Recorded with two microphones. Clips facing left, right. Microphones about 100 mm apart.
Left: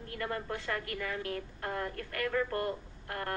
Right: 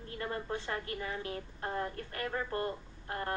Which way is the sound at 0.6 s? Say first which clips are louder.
Left 1 dB; 25° right (ahead or behind).